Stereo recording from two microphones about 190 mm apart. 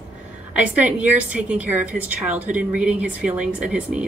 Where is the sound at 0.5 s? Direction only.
5° right (ahead or behind).